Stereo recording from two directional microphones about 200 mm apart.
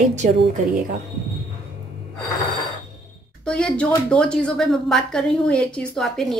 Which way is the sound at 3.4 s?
5° left (ahead or behind).